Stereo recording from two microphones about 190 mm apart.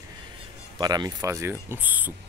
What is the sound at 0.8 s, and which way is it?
Speech, 20° right (ahead or behind).